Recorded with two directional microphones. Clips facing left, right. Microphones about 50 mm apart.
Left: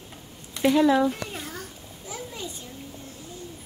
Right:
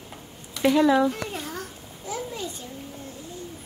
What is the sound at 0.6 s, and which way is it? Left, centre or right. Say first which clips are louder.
A child's voice: even; centre.